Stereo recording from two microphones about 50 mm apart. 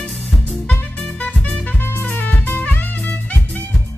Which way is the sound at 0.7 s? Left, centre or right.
Left.